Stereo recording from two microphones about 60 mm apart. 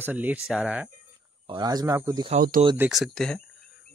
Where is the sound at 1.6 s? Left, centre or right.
Right.